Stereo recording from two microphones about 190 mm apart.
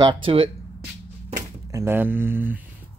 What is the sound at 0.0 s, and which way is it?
Speech, 25° right (ahead or behind).